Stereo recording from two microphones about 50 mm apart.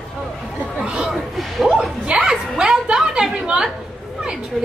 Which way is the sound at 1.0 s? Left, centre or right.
Centre.